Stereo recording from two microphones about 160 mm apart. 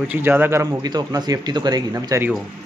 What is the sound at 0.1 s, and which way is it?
Speech, 15° right (ahead or behind).